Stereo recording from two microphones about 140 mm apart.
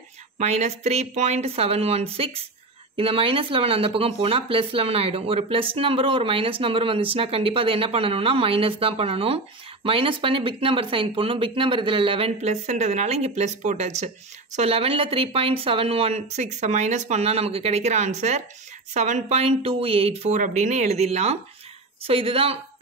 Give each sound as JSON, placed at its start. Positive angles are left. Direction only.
{"t": 0.4, "sound": "speech", "side_deg": -55}
{"t": 12.4, "sound": "speech", "side_deg": -55}